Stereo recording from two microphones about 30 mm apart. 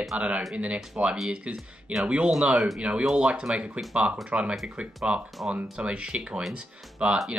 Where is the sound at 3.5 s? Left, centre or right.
Right.